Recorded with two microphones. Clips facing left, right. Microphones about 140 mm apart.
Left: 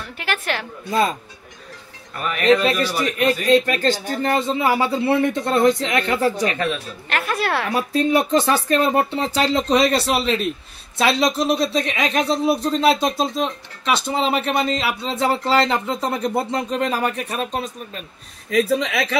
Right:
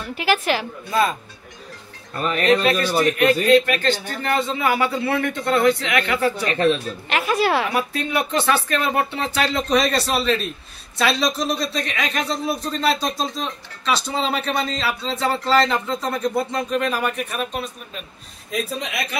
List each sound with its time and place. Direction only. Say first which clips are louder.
0.0 s a woman's voice: right 5 dB; 5° right (ahead or behind)
2.1 s speech: right 3 dB; 30° right (ahead or behind)
3.5 s speech: even; 30° left (ahead or behind)
6.4 s speech: right 3 dB; 35° right (ahead or behind)
7.1 s a woman's voice: right 3 dB; 5° right (ahead or behind)
7.7 s speech: left 4 dB; 30° left (ahead or behind)
18.5 s speech: left 8 dB; 90° left